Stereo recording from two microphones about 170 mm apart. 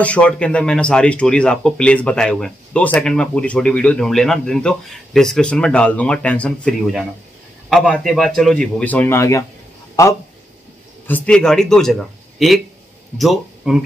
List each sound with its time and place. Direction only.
0.0 s speech: 5° left (ahead or behind)
7.7 s speech: centre (ahead or behind); by 10.1 s 20° left (ahead or behind)
11.1 s speech: 10° left (ahead or behind)